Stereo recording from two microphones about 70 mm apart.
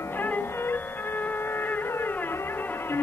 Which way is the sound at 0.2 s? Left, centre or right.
Left.